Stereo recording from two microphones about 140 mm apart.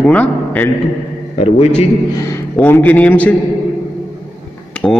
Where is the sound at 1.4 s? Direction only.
50° left (ahead or behind).